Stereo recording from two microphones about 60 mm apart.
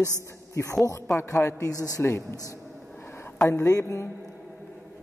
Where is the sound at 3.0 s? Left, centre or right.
Left.